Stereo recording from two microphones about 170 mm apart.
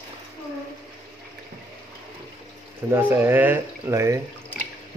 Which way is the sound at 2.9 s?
10° right (ahead or behind).